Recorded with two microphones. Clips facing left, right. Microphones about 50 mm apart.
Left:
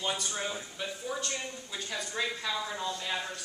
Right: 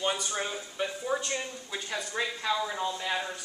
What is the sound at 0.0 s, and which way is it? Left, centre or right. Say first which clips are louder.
Speech: right 3 dB; centre.